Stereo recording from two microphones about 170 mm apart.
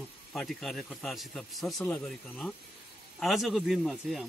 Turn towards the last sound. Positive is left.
turn(degrees=0)  # may be behind; listen again after turning